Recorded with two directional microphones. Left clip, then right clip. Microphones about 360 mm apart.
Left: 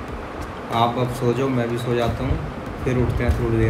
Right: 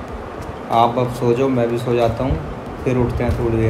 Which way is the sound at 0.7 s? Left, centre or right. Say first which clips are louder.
Right 5 dB; centre.